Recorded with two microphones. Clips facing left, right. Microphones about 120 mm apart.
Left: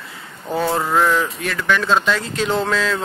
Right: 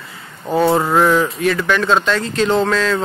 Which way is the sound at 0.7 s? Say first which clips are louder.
Right 5 dB; 25° right (ahead or behind).